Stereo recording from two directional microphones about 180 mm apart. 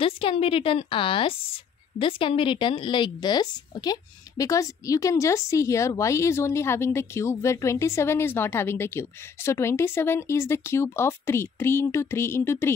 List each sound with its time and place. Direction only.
0.0 s a woman's voice: 30° left (ahead or behind); by 12.7 s 15° left (ahead or behind)